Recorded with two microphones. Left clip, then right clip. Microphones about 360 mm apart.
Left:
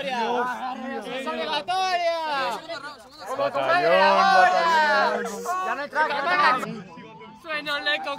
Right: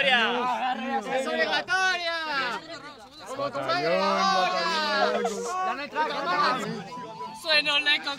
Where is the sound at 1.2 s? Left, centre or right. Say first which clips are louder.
Right 1 dB; centre.